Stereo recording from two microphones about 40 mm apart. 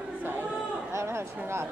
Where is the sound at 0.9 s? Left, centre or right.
Right.